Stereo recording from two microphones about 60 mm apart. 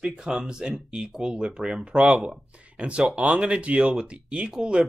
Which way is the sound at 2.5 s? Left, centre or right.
Right.